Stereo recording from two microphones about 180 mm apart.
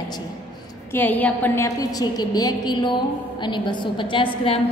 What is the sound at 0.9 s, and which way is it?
A woman's voice, 10° left (ahead or behind).